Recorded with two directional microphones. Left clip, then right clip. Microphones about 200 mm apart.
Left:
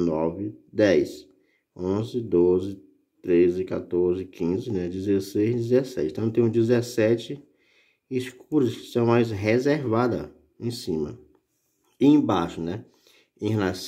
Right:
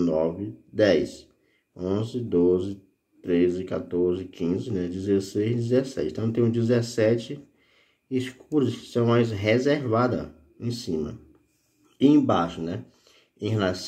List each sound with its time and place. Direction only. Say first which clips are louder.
0.0 s speech: right 1 dB; 45° left (ahead or behind)
8.2 s speech: left 1 dB; 40° left (ahead or behind)